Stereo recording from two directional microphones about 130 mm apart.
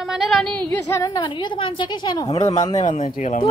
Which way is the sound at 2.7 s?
70° left (ahead or behind).